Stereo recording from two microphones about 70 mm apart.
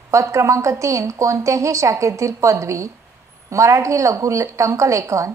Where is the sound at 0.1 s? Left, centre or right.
Right.